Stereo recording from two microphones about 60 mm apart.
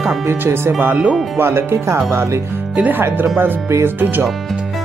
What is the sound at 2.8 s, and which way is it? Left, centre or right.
Speech, right.